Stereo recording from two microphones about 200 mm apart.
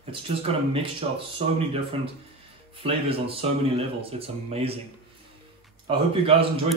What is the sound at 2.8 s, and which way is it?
Speech, 30° right (ahead or behind).